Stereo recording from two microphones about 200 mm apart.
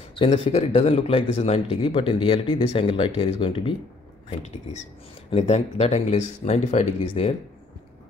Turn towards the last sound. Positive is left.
turn(degrees=30)  # may be behind; listen again after turning